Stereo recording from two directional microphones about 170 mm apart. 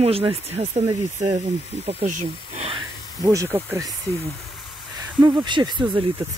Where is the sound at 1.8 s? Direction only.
40° right (ahead or behind).